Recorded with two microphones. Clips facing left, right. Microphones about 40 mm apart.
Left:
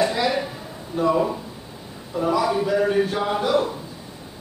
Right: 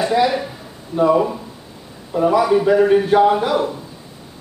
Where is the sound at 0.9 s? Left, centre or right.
Centre.